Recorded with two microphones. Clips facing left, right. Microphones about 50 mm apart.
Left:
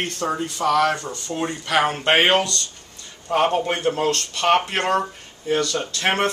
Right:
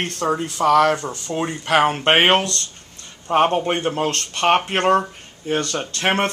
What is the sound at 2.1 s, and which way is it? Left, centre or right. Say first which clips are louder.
Speech: left 1 dB; right.